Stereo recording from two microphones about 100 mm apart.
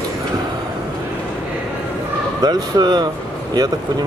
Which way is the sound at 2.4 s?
45° right (ahead or behind).